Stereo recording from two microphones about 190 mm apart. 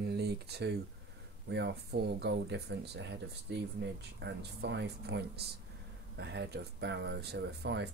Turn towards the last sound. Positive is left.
turn(degrees=-60)  # may be behind; listen again after turning